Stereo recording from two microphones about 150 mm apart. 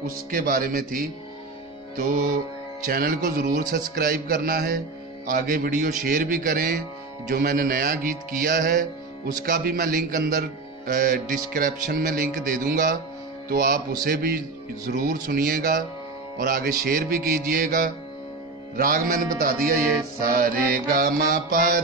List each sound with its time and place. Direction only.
0.3 s a man's voice: 75° right (ahead or behind)
2.0 s music: 65° right (ahead or behind)
2.9 s a man's voice: 70° right (ahead or behind)
13.5 s speech: 80° right
14.0 s a man's voice: 90° right
14.9 s a man's voice: 70° right (ahead or behind)
20.2 s a man's voice: 70° right (ahead or behind)